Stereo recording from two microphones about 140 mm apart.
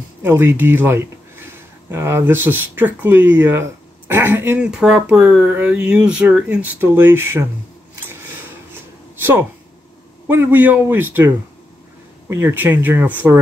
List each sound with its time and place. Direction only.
0.2 s speech: 15° right (ahead or behind)
9.2 s speech: 15° right (ahead or behind)